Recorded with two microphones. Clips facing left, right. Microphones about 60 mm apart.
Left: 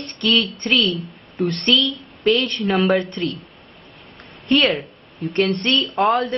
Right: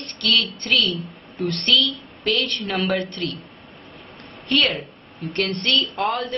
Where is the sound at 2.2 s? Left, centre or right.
Centre.